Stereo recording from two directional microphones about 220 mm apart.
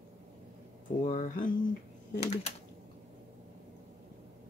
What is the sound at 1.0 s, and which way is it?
Speech, 35° left (ahead or behind).